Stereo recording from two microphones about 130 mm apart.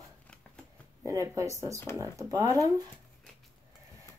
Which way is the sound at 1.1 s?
25° right (ahead or behind).